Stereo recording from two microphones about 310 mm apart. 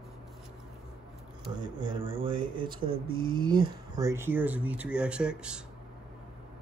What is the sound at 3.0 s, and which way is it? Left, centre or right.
Speech, right.